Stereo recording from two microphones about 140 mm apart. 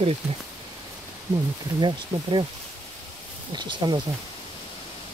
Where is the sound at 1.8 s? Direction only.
35° right (ahead or behind).